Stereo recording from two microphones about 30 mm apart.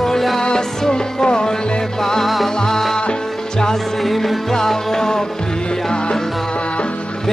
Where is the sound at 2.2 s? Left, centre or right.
Centre.